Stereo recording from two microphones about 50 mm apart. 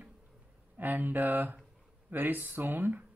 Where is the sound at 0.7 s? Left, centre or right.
Right.